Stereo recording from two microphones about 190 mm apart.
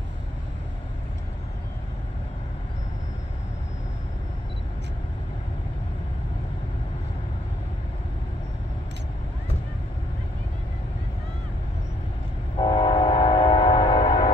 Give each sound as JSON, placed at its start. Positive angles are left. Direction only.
{"t": 12.5, "sound": "train", "side_deg": 25}